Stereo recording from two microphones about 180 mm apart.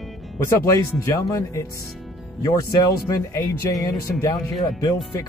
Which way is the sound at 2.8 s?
15° left (ahead or behind).